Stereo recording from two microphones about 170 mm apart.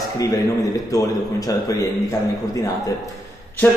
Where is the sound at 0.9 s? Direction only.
20° left (ahead or behind).